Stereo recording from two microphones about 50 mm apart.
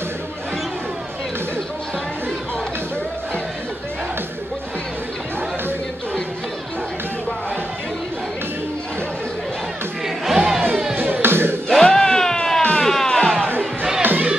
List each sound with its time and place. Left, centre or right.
10.0 s crowd: centre
11.0 s music: right
11.8 s music: centre
14.0 s crowd: right